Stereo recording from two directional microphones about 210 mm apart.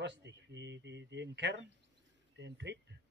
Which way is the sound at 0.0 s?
55° right (ahead or behind).